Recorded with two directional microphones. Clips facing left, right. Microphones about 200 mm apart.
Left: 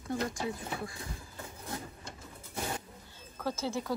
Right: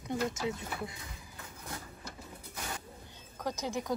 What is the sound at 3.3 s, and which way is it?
Speech, 15° right (ahead or behind).